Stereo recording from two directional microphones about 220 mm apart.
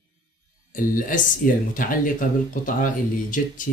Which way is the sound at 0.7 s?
40° left (ahead or behind).